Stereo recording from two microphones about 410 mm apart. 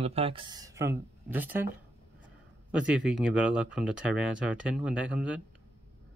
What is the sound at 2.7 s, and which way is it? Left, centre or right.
Speech, centre.